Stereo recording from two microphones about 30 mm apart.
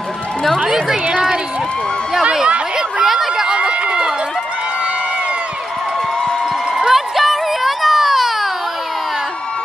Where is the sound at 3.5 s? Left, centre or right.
Right.